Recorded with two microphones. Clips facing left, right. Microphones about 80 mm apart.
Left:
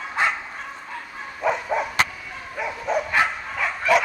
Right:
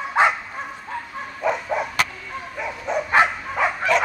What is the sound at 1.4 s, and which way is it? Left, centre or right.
Dog, centre.